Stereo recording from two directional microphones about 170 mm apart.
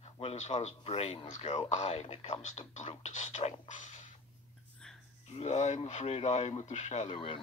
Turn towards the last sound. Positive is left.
turn(degrees=35)  # may be behind; listen again after turning